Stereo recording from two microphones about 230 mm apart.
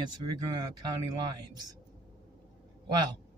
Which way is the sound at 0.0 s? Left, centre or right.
Centre.